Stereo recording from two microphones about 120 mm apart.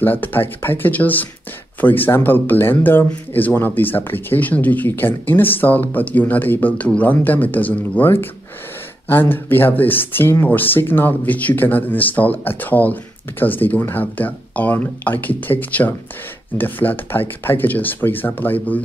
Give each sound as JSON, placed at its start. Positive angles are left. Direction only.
{"t": 0.0, "sound": "speech", "side_deg": 15}